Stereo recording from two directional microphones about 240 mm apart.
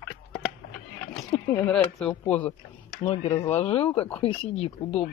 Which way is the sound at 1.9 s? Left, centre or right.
Centre.